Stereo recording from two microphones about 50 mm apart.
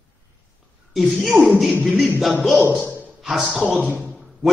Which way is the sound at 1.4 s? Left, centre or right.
Centre.